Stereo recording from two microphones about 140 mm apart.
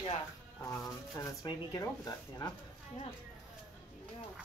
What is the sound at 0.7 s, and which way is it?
Speech, 25° left (ahead or behind).